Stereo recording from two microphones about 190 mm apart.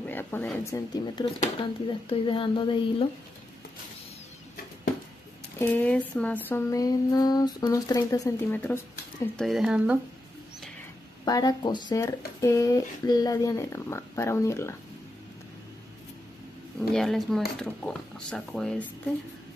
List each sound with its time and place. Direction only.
0.0 s speech: 10° left (ahead or behind); by 3.1 s 25° left (ahead or behind)
5.6 s a sound: 10° left (ahead or behind)
9.4 s speech: centre (ahead or behind)
11.2 s speech: 20° left (ahead or behind)
12.4 s a sound: 15° left (ahead or behind)
16.9 s speech: centre (ahead or behind)